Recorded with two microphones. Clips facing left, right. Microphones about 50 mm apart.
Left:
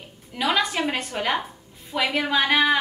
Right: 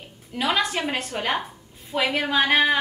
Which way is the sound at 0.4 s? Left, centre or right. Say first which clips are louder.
Left 1 dB; centre.